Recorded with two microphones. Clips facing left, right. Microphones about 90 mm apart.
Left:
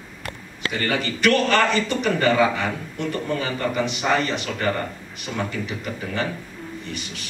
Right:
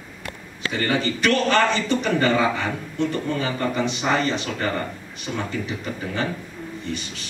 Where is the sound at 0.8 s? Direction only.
30° right (ahead or behind).